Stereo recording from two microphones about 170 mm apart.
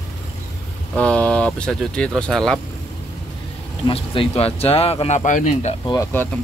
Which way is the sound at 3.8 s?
35° left (ahead or behind).